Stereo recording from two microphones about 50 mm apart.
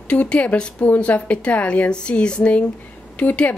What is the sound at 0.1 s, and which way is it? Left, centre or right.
Speech, left.